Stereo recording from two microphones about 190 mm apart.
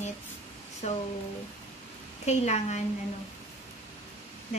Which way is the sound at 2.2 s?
35° left (ahead or behind).